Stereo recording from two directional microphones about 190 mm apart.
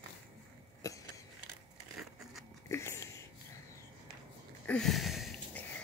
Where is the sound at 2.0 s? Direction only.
Centre (ahead or behind).